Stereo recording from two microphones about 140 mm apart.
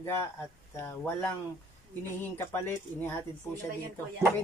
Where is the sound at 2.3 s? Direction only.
15° left (ahead or behind).